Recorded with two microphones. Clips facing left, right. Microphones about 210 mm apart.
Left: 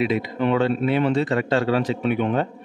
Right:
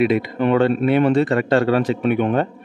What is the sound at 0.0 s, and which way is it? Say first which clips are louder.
A man's voice: right 4 dB; 55° right (ahead or behind).